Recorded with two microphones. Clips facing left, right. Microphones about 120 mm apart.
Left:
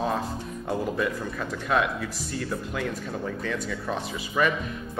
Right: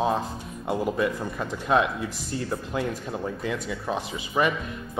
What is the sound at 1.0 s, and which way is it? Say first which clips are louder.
Speech: right 2 dB; 20° right (ahead or behind).